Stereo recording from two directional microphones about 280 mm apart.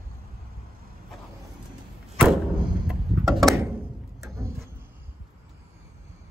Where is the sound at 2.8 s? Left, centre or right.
Centre.